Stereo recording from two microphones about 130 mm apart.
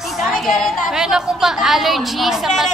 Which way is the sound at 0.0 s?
Centre (ahead or behind).